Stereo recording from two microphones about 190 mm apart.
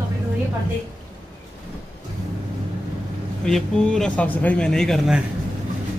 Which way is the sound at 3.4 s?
5° left (ahead or behind).